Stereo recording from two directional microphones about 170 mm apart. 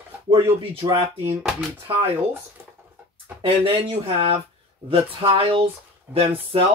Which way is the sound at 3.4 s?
35° right (ahead or behind).